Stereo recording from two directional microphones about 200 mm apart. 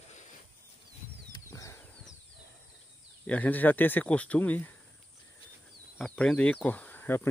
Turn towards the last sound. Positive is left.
turn(degrees=10)  # may be behind; listen again after turning